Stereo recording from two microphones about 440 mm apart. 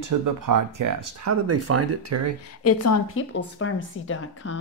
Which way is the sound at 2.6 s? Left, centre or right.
Left.